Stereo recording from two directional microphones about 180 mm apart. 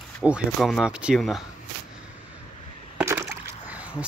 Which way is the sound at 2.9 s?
10° right (ahead or behind).